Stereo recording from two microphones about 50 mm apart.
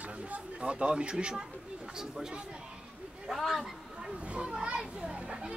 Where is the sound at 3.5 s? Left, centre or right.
Centre.